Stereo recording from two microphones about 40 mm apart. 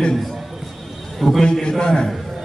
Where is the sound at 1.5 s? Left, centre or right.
Centre.